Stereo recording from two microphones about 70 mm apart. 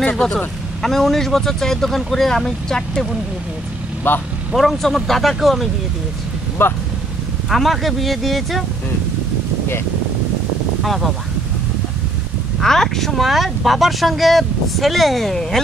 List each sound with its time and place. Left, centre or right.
0.1 s speech: centre
4.1 s speech: left
4.6 s speech: centre
6.6 s speech: left
7.4 s speech: centre
10.8 s speech: centre
12.5 s speech: centre